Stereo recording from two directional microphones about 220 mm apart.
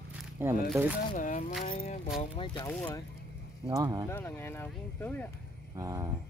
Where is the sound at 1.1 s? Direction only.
35° left (ahead or behind).